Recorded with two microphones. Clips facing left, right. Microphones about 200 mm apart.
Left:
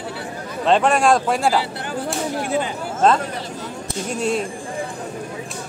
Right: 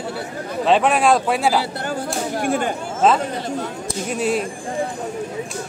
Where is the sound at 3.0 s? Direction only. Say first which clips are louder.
Right 1 dB; 5° right (ahead or behind).